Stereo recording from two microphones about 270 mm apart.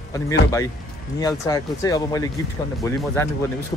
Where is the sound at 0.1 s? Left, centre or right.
Centre.